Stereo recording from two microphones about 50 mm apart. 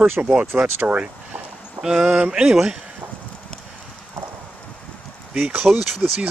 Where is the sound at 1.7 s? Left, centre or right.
Centre.